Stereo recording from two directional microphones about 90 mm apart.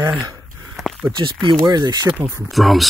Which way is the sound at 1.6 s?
50° right (ahead or behind).